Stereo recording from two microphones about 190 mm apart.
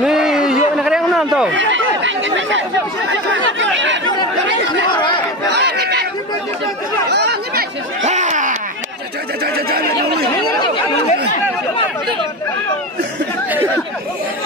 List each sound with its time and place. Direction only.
0.0 s a sound: 5° right (ahead or behind)
1.5 s speech: 75° right (ahead or behind)
4.9 s speech: 25° left (ahead or behind)
5.5 s chatter: 60° right (ahead or behind)
7.1 s chatter: 60° right (ahead or behind)
8.0 s a sound: 40° right (ahead or behind)
9.4 s speech: 55° right (ahead or behind)
11.1 s chatter: 35° left (ahead or behind)